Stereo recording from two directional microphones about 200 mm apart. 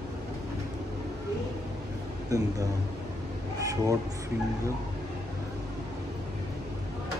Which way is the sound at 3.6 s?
15° right (ahead or behind).